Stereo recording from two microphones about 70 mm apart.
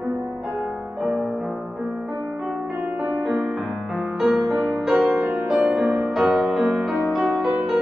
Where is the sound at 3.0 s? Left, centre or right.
Centre.